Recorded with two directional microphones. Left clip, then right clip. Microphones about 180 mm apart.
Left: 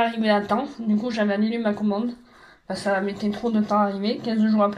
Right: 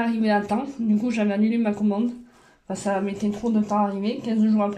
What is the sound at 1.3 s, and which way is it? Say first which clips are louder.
Speech: even; 40° right (ahead or behind).